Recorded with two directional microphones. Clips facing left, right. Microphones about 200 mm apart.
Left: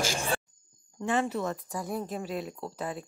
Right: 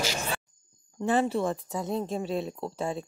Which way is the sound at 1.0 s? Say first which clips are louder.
Right 3 dB; 30° right (ahead or behind).